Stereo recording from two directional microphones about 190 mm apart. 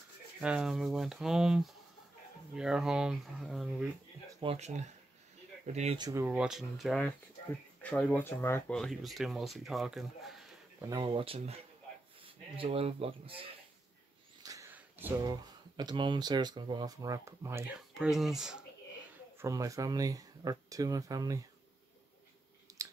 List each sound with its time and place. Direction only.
0.4 s speech: 5° right (ahead or behind)
4.4 s speech: 35° right (ahead or behind)
5.9 s speech: 20° right (ahead or behind)
6.2 s speech: 5° right (ahead or behind)
10.8 s speech: 20° right (ahead or behind)
14.4 s a sound: 15° right (ahead or behind)
15.4 s speech: 20° right (ahead or behind)
17.9 s speech: centre (ahead or behind)
19.3 s speech: 15° right (ahead or behind)
22.7 s a sound: 20° right (ahead or behind)